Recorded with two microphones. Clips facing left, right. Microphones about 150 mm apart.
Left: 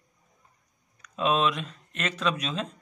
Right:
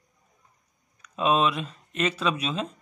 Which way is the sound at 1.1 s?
5° right (ahead or behind).